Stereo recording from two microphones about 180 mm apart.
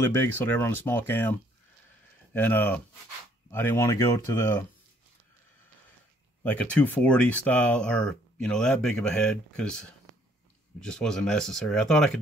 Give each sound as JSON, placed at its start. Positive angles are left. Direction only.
{"t": 0.0, "sound": "speech", "side_deg": 10}
{"t": 2.3, "sound": "speech", "side_deg": 10}
{"t": 6.4, "sound": "speech", "side_deg": 10}